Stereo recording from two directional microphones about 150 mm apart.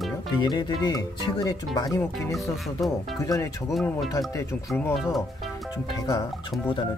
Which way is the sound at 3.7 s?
Centre (ahead or behind).